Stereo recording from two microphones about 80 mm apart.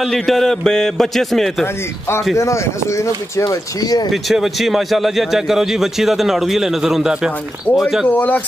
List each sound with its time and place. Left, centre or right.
0.0 s a man's voice: centre
2.3 s speech: left
3.4 s speech: left
4.1 s a man's voice: centre
8.1 s speech: left